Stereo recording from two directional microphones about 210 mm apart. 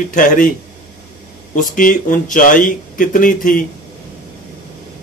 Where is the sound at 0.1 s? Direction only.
40° left (ahead or behind).